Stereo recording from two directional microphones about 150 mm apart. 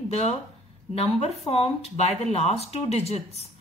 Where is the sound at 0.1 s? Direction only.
45° left (ahead or behind).